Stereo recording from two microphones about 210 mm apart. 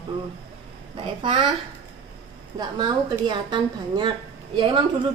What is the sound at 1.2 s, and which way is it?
Speech, 25° right (ahead or behind).